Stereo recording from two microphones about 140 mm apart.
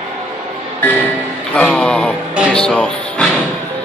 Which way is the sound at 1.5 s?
10° left (ahead or behind).